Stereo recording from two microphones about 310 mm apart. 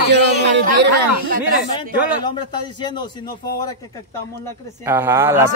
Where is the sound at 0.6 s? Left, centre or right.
Right.